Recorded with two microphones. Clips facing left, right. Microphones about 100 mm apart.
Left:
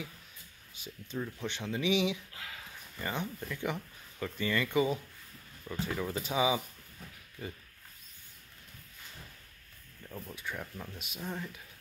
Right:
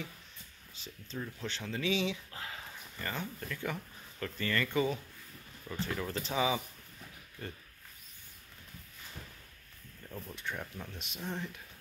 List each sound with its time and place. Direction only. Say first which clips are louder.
0.7 s speech: left 3 dB; 10° left (ahead or behind)
10.0 s speech: even; 5° left (ahead or behind)